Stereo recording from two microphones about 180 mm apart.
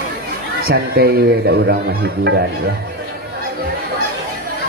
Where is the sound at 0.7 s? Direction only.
60° right (ahead or behind).